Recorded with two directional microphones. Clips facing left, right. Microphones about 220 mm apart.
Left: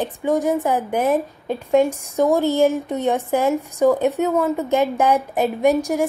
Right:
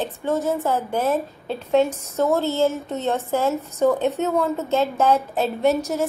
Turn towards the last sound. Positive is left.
turn(degrees=15)  # may be behind; listen again after turning